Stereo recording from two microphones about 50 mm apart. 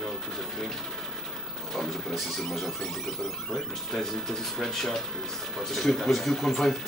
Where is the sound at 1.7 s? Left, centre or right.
Centre.